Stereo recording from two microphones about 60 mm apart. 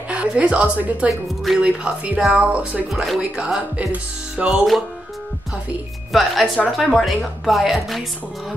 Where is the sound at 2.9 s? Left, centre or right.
Centre.